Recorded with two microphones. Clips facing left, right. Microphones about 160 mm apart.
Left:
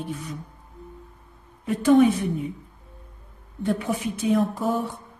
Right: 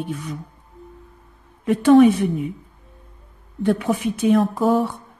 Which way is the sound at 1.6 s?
70° right (ahead or behind).